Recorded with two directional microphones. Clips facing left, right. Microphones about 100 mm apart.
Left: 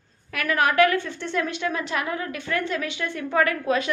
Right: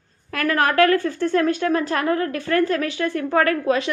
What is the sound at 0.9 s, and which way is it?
A woman's voice, 40° right (ahead or behind).